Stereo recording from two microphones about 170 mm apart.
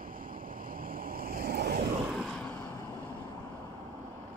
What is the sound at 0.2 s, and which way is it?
Waves, 55° right (ahead or behind).